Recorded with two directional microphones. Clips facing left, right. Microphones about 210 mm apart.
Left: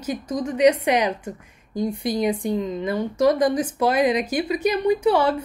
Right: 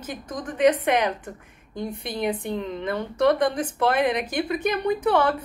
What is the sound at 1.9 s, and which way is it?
Speech, 10° left (ahead or behind).